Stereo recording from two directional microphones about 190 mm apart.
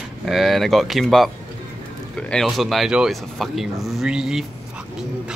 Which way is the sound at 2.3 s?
Centre (ahead or behind).